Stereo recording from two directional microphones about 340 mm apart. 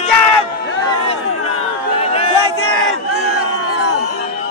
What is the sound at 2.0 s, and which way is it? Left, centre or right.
Chatter, centre.